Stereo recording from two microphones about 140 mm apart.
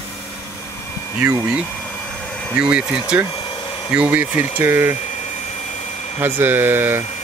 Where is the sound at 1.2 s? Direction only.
20° right (ahead or behind).